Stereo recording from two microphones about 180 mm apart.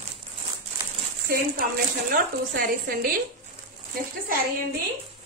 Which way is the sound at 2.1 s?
55° right (ahead or behind).